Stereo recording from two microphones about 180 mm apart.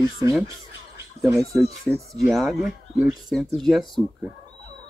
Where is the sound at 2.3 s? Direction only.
Centre (ahead or behind).